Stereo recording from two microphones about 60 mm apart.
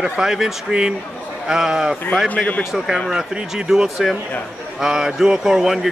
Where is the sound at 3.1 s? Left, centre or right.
Centre.